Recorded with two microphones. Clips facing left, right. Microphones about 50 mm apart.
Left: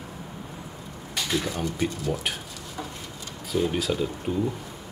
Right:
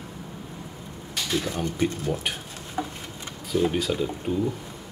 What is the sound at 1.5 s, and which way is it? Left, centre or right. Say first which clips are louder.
Speech: right 2 dB; right.